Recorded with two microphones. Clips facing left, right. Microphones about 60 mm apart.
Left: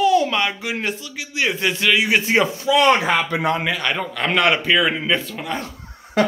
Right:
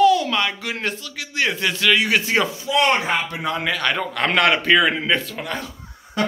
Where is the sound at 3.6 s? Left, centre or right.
Centre.